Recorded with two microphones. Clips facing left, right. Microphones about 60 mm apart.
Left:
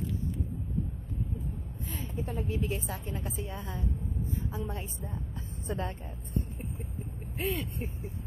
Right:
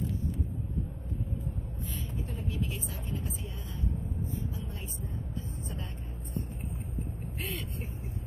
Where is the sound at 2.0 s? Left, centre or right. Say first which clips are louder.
Left 6 dB; left.